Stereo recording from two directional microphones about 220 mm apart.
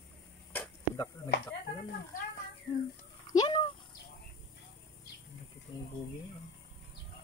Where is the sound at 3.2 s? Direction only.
20° left (ahead or behind).